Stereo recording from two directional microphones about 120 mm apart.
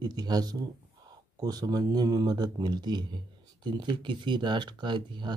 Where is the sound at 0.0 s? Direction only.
35° right (ahead or behind).